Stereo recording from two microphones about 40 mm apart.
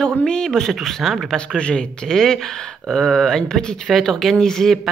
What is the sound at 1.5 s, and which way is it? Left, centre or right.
A man's voice, left.